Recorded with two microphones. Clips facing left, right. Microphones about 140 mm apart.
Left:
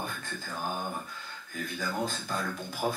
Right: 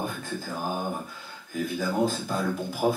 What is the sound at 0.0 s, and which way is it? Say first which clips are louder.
A man's voice: right 6 dB; 5° right (ahead or behind).